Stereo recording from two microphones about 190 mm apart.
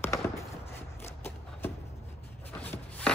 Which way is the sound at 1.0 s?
10° left (ahead or behind).